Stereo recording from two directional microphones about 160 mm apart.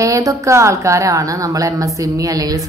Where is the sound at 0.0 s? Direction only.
20° right (ahead or behind).